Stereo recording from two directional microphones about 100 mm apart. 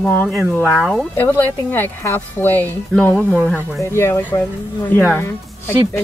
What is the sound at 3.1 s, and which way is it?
Speech, 10° left (ahead or behind).